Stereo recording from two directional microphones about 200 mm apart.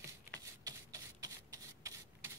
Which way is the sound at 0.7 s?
15° right (ahead or behind).